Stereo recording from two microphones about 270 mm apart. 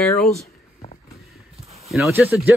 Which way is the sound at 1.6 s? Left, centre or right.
Right.